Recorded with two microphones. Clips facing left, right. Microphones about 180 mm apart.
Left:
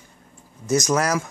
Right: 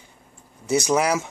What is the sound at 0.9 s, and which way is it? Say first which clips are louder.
Speech: right 3 dB; 15° right (ahead or behind).